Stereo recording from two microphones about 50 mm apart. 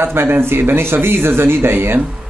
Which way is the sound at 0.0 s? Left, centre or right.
Right.